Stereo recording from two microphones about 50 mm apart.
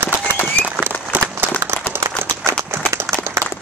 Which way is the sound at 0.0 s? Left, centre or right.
Right.